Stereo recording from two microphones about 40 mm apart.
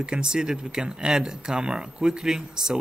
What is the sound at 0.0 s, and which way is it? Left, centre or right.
Speech, centre.